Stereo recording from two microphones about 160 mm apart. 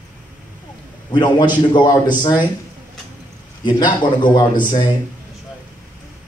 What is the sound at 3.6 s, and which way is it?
Speech, 30° left (ahead or behind).